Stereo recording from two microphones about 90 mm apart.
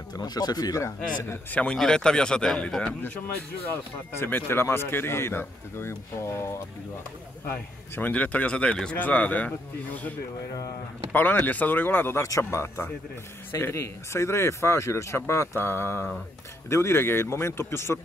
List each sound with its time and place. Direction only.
0.2 s speech: 50° left (ahead or behind)
1.5 s speech: 10° left (ahead or behind)
3.6 s speech: 25° left (ahead or behind)
7.4 s speech: 20° left (ahead or behind)
11.1 s speech: 20° left (ahead or behind)
12.2 s speech: 35° left (ahead or behind)